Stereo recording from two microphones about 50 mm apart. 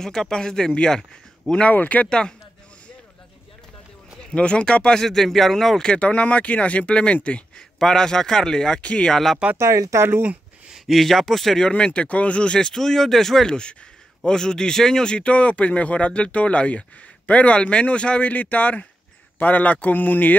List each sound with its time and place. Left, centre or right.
0.0 s speech: centre
1.7 s a man's voice: left
2.0 s speech: centre
4.2 s speech: centre
5.9 s speech: left
9.1 s speech: centre
9.6 s speech: right
10.7 s speech: centre
11.6 s speech: left
18.3 s a man's voice: left